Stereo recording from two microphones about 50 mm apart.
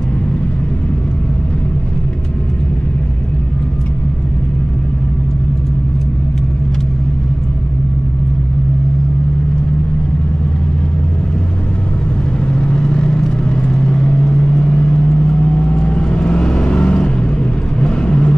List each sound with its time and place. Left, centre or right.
12.5 s vehicle: centre